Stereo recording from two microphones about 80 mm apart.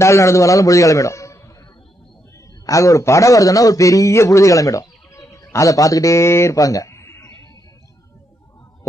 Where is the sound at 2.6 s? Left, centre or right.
Left.